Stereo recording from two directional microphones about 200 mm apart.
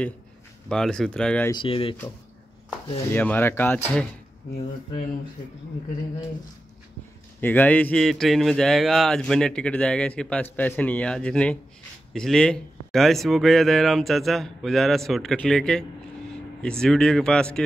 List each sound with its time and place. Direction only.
0.7 s speech: 5° left (ahead or behind)
1.5 s speech: 25° left (ahead or behind)
3.1 s speech: 10° left (ahead or behind)
7.3 s speech: 10° left (ahead or behind)